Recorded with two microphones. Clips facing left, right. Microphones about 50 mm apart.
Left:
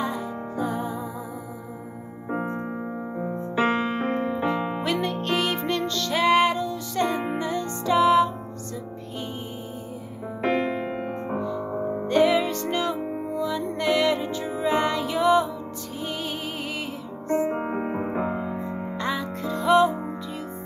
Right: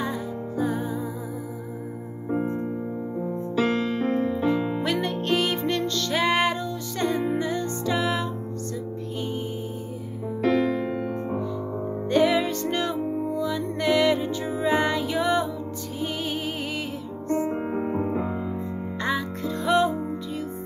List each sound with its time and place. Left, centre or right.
0.0 s music: centre
2.2 s music: left
4.8 s music: centre
10.4 s music: left
12.1 s music: centre
17.5 s music: left
18.9 s music: centre